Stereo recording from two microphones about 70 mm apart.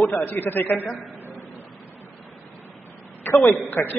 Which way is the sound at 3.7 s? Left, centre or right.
Left.